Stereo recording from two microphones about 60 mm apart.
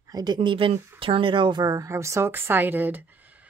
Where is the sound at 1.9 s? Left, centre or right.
Right.